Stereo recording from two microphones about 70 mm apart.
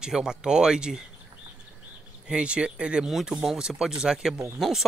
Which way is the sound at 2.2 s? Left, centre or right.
Centre.